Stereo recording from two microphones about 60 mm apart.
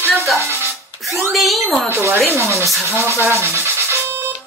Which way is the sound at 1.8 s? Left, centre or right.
Right.